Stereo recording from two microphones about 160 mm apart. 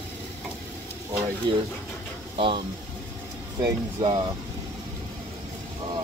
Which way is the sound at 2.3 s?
35° right (ahead or behind).